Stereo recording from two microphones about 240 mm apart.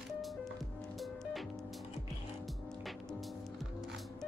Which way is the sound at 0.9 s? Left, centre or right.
Centre.